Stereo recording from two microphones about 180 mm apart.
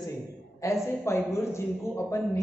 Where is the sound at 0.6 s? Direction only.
15° left (ahead or behind).